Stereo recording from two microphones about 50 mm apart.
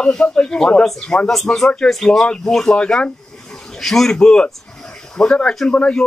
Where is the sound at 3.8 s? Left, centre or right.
Centre; by 6.0 s left.